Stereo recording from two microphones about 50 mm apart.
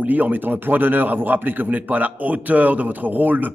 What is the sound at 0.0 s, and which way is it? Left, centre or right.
A man's voice, right.